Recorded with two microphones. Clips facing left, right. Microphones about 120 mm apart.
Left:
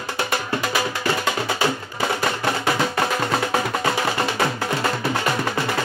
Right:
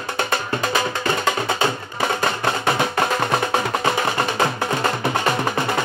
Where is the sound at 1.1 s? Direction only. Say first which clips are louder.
Right 2 dB; 25° right (ahead or behind).